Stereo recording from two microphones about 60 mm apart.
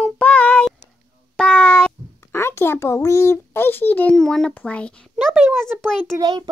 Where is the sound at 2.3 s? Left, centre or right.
Left.